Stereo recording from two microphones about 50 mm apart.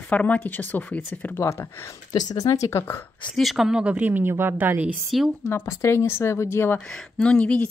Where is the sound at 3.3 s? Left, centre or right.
Centre.